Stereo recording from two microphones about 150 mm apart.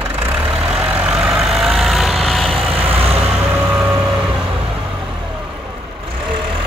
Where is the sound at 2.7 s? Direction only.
40° right (ahead or behind).